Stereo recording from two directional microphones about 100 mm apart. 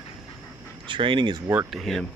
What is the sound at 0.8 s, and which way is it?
Speech, 55° right (ahead or behind).